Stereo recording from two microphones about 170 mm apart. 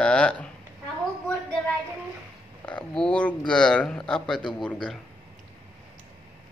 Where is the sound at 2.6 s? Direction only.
5° left (ahead or behind).